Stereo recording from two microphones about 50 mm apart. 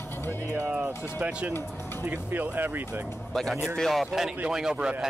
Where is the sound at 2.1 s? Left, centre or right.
Right.